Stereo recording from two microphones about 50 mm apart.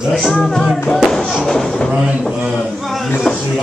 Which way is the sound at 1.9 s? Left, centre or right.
Right.